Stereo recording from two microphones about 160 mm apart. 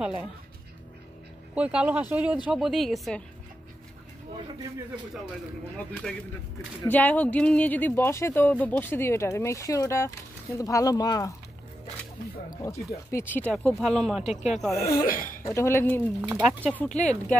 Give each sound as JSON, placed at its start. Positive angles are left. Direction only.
{"t": 0.0, "sound": "speech", "side_deg": -5}
{"t": 1.5, "sound": "a woman's voice", "side_deg": -10}
{"t": 5.8, "sound": "speech", "side_deg": 5}
{"t": 12.6, "sound": "speech", "side_deg": 15}
{"t": 14.2, "sound": "speech", "side_deg": 45}
{"t": 14.9, "sound": "speech", "side_deg": 60}
{"t": 15.4, "sound": "speech", "side_deg": 15}
{"t": 16.2, "sound": "speech", "side_deg": -10}
{"t": 16.6, "sound": "speech", "side_deg": 10}
{"t": 16.9, "sound": "speech", "side_deg": 45}